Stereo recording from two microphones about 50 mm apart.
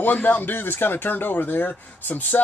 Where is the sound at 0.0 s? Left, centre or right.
Left.